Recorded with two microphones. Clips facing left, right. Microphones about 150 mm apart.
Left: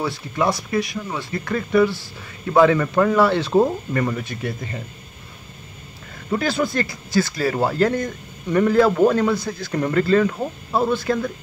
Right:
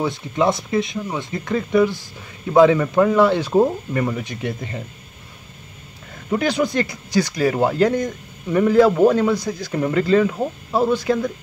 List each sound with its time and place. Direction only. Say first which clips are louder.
0.0 s speech: right 3 dB; 20° right (ahead or behind)
6.3 s speech: right 2 dB; 15° right (ahead or behind)